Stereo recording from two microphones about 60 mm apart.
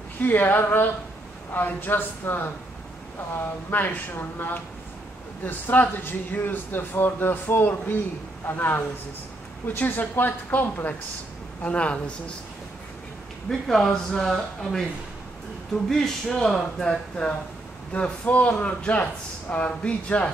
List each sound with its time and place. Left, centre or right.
0.2 s speech: left
11.6 s speech: left
13.5 s speech: centre
15.9 s speech: centre
17.9 s speech: left